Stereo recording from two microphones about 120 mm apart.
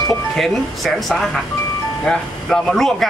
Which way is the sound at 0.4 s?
Centre (ahead or behind).